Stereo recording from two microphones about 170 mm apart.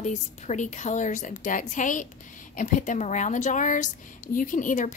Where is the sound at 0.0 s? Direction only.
45° left (ahead or behind).